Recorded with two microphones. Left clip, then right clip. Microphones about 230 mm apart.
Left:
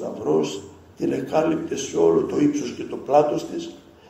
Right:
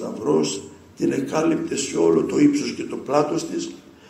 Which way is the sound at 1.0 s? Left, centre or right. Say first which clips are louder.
Even; right.